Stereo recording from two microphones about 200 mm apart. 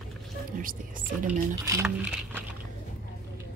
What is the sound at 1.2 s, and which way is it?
Speech, 10° right (ahead or behind).